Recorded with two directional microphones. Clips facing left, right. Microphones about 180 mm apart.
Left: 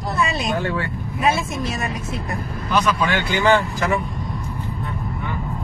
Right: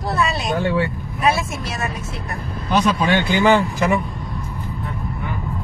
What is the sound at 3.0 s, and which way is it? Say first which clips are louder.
Speech: right 3 dB; 20° right (ahead or behind).